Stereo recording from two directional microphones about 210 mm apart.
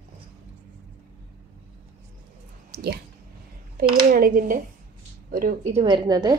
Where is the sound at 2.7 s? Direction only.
50° right (ahead or behind).